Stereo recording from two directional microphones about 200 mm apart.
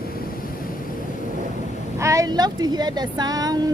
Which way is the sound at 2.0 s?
15° right (ahead or behind).